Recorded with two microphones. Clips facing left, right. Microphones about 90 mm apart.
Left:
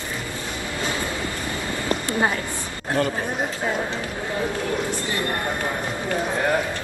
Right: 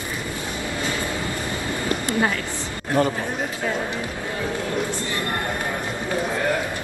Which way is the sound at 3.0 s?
20° right (ahead or behind).